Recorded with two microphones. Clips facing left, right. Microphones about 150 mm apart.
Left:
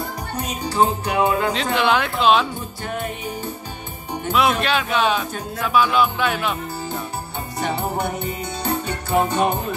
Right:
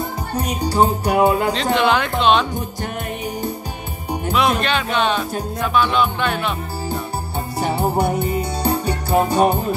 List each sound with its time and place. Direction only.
0.6 s music: 40° right (ahead or behind)
1.5 s speech: 5° left (ahead or behind)
4.1 s speech: centre (ahead or behind)
7.5 s music: 35° right (ahead or behind)